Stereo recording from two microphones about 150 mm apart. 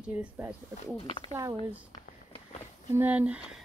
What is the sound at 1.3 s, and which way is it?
Speech, 20° right (ahead or behind).